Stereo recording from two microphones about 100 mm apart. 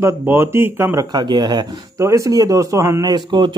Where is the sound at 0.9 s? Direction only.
45° right (ahead or behind).